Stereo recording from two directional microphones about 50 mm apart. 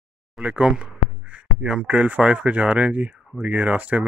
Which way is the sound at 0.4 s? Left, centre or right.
Right.